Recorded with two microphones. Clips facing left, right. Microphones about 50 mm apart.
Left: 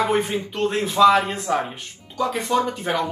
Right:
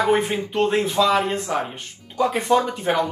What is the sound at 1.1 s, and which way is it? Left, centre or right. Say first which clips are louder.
Speech: left 1 dB; left.